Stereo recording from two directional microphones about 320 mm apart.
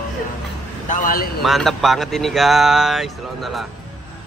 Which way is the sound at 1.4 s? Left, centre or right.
Centre.